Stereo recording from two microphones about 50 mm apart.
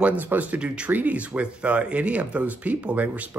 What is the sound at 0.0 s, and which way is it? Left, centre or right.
Speech, right.